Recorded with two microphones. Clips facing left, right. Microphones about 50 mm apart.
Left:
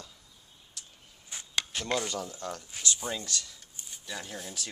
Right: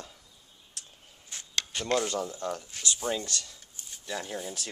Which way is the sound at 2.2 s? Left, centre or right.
Centre.